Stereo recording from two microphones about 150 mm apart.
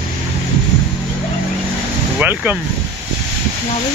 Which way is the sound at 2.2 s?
15° right (ahead or behind).